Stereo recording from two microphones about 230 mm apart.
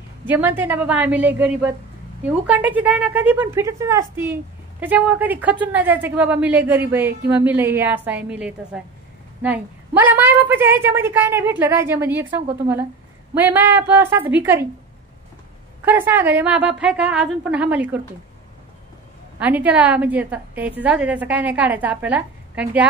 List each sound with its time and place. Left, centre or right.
0.3 s a woman's voice: centre
15.8 s a woman's voice: centre
19.4 s a woman's voice: centre